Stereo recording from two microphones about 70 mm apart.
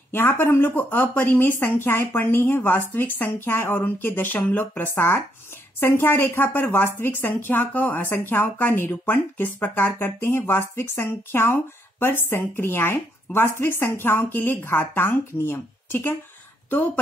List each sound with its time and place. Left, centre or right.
0.1 s a woman's voice: left